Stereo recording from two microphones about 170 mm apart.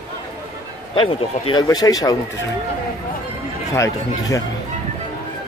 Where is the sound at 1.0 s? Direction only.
30° left (ahead or behind).